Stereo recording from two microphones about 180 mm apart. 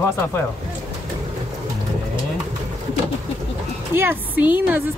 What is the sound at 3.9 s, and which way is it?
Speech, 10° right (ahead or behind).